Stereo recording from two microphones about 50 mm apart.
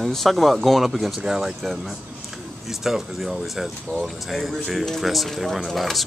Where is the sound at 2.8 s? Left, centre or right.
Centre.